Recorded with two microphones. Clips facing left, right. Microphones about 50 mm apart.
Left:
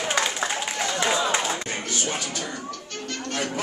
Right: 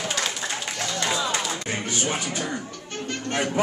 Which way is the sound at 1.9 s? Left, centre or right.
Right.